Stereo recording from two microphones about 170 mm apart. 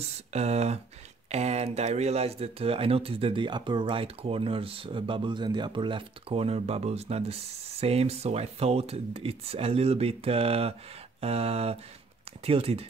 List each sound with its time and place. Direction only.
0.3 s speech: 40° right (ahead or behind)